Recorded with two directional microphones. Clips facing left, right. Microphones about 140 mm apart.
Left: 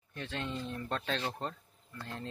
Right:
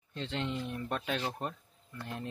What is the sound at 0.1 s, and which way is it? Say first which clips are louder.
Speech: right 3 dB; 20° right (ahead or behind).